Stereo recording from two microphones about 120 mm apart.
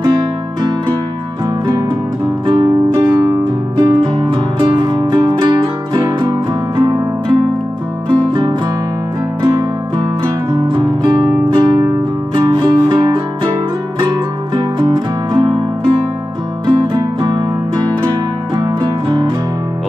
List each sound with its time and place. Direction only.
0.0 s music: 35° right (ahead or behind)
2.4 s music: 35° right (ahead or behind)
16.6 s music: 35° right (ahead or behind)